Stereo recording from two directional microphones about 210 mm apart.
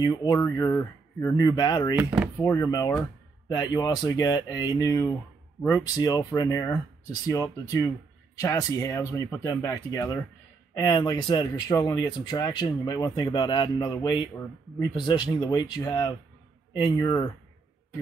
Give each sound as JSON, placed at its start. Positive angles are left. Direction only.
{"t": 0.0, "sound": "speech", "side_deg": 20}
{"t": 2.0, "sound": "speech", "side_deg": -5}
{"t": 2.4, "sound": "speech", "side_deg": 15}
{"t": 2.9, "sound": "a sound", "side_deg": 5}
{"t": 3.5, "sound": "speech", "side_deg": 20}